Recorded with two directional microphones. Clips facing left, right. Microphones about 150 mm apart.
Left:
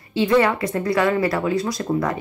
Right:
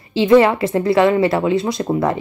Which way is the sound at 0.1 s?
25° right (ahead or behind).